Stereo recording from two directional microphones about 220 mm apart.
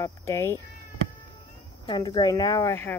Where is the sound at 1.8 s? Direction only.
20° left (ahead or behind).